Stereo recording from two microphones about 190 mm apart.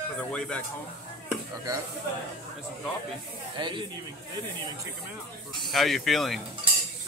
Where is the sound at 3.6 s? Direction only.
25° right (ahead or behind).